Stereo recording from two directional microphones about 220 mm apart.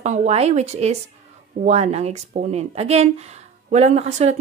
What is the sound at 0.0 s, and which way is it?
Speech, 30° right (ahead or behind).